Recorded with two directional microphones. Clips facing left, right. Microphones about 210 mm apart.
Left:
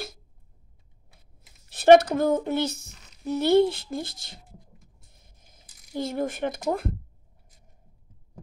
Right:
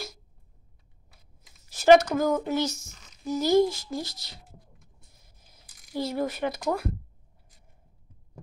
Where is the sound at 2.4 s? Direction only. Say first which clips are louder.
Left 1 dB; 55° left (ahead or behind).